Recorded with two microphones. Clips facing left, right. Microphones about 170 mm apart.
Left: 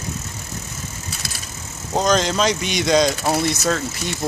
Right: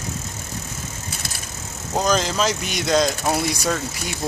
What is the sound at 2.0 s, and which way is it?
Speech, 5° right (ahead or behind).